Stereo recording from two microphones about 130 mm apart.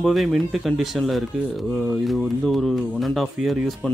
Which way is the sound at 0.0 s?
Centre (ahead or behind).